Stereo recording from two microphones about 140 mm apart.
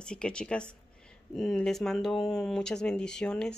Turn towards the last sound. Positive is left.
turn(degrees=5)  # may be behind; listen again after turning